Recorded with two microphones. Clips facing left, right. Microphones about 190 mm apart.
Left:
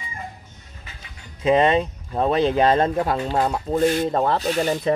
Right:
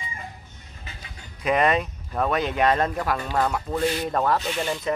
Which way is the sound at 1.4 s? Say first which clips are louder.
Left 4 dB; 25° left (ahead or behind).